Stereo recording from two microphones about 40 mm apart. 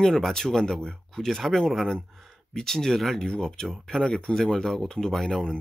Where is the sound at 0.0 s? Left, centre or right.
Centre.